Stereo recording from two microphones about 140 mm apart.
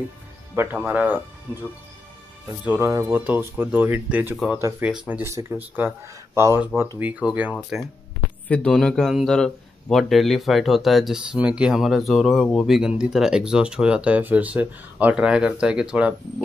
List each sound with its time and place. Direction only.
0.6 s speech: 15° right (ahead or behind)
2.8 s speech: 20° right (ahead or behind)
4.8 s speech: 10° right (ahead or behind)
5.3 s speech: 20° right (ahead or behind)
8.5 s a man's voice: 5° left (ahead or behind)